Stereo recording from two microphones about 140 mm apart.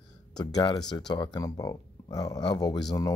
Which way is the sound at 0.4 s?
30° left (ahead or behind).